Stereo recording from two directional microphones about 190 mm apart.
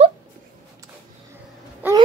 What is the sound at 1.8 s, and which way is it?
Wail, 10° right (ahead or behind).